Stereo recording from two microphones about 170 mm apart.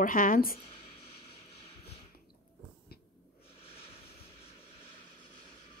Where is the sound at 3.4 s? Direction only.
35° left (ahead or behind).